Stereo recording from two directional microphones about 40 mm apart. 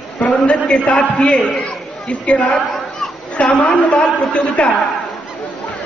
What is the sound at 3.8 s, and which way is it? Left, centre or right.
Speech, left.